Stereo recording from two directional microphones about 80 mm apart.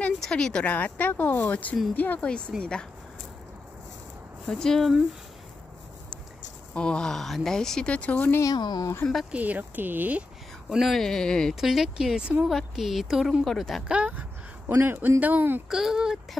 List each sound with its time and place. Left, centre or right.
0.2 s speech: centre
4.5 s speech: centre
6.7 s speech: centre
8.5 s speech: left
9.3 s speech: centre
10.7 s a woman's voice: centre
11.6 s a woman's voice: centre
13.8 s speech: centre
14.7 s speech: right
15.7 s speech: centre